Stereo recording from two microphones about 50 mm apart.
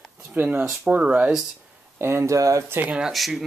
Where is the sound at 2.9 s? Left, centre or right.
Centre.